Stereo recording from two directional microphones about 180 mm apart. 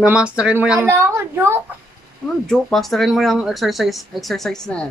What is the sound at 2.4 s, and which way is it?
Speech, centre (ahead or behind).